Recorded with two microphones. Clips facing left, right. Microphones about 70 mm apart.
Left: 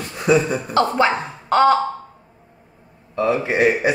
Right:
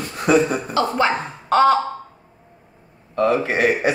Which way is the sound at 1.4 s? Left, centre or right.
Centre.